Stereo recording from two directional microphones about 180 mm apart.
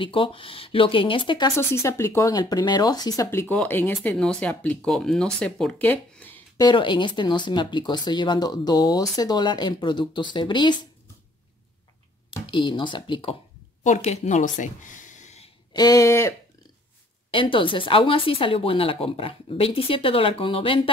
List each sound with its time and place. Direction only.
0.0 s speech: 30° left (ahead or behind)
1.6 s speech: 15° left (ahead or behind)
6.6 s speech: 25° left (ahead or behind)
12.4 s speech: 25° left (ahead or behind)
13.8 s speech: 40° left (ahead or behind)
15.7 s speech: 20° left (ahead or behind)
17.3 s speech: 30° left (ahead or behind)